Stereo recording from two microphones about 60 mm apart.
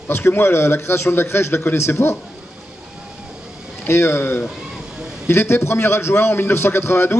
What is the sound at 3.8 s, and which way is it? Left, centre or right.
A man's voice, left.